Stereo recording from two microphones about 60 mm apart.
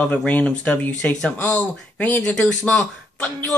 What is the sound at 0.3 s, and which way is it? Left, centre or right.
A man's voice, left.